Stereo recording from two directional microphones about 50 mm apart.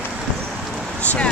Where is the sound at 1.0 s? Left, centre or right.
Left.